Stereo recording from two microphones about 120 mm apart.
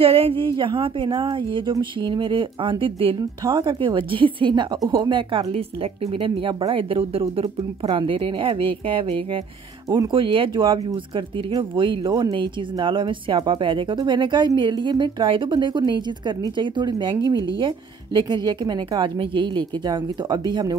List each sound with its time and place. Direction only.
0.0 s a woman's voice: 55° right (ahead or behind); by 20.7 s 35° right (ahead or behind)